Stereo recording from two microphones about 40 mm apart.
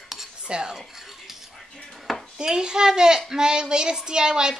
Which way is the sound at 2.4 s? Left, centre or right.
Centre.